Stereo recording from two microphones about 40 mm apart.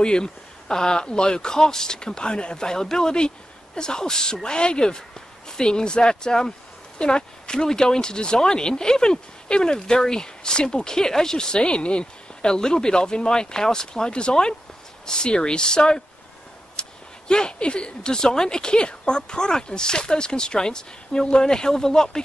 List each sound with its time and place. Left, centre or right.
0.0 s speech: centre
16.8 s a sound: left
17.3 s speech: left